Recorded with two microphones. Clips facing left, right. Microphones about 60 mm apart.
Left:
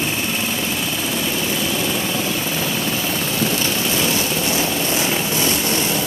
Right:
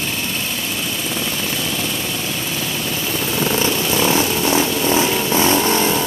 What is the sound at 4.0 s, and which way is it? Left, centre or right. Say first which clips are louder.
Vehicle: right 3 dB; right.